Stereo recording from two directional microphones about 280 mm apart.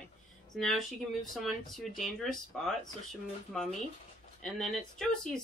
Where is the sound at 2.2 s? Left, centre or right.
Centre.